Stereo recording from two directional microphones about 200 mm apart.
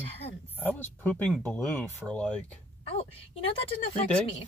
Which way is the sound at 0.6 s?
10° left (ahead or behind).